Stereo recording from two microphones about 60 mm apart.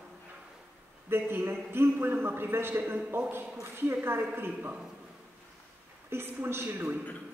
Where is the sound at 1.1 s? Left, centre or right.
Right.